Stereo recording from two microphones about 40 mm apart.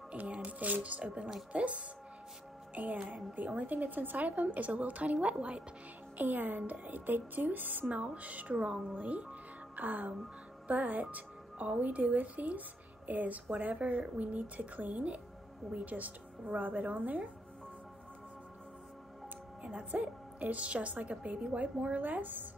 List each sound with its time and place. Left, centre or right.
0.1 s a woman's voice: right
2.7 s a woman's voice: right
6.1 s speech: right
8.0 s a woman's voice: right
19.6 s a woman's voice: right